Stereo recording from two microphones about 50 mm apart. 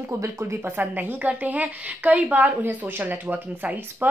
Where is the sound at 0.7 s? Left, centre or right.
Right.